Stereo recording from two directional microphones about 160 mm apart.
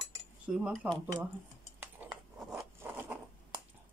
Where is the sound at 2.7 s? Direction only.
15° right (ahead or behind).